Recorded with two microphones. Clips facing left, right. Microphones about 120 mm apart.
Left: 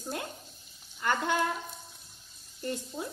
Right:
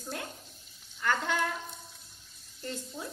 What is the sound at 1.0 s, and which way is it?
Speech, 20° left (ahead or behind).